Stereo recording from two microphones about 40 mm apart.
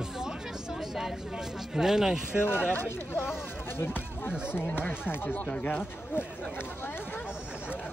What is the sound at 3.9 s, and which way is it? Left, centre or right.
Speech, left.